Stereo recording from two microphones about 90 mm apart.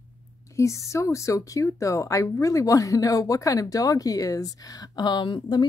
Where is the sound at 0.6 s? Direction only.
35° left (ahead or behind).